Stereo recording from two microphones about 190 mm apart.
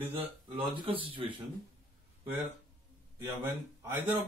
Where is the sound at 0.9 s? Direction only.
30° right (ahead or behind).